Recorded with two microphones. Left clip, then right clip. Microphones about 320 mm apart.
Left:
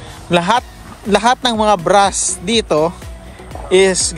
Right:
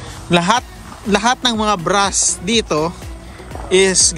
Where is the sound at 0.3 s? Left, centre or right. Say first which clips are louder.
Left 1 dB; centre.